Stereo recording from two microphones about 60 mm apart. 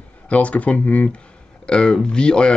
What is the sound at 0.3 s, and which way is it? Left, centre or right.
Speech, left.